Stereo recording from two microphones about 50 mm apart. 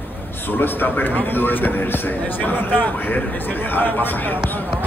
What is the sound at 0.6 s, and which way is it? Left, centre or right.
A man's voice, left.